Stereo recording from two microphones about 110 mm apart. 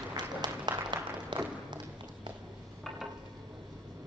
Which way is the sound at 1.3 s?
40° right (ahead or behind).